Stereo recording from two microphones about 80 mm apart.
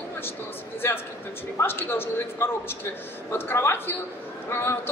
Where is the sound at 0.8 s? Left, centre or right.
Left.